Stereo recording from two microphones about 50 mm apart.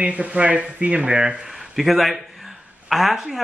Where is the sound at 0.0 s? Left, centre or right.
Right; by 1.9 s centre.